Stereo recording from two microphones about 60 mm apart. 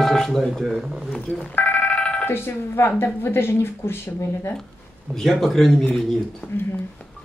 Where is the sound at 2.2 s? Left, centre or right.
Left.